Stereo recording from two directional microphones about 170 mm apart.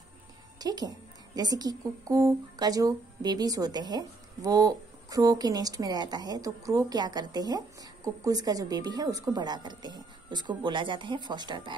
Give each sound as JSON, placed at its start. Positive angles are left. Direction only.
{"t": 0.6, "sound": "a woman's voice", "side_deg": -25}